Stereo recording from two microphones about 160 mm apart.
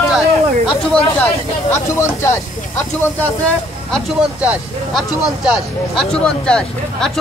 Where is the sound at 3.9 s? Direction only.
5° right (ahead or behind).